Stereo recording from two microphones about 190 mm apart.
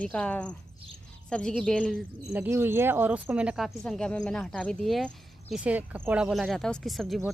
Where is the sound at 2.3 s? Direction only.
10° right (ahead or behind).